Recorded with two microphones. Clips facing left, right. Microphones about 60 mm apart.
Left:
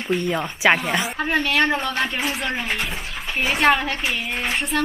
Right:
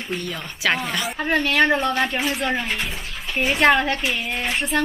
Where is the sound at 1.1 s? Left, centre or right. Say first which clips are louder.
Right 3 dB; centre.